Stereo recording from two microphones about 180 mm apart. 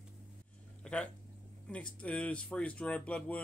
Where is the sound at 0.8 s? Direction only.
5° left (ahead or behind).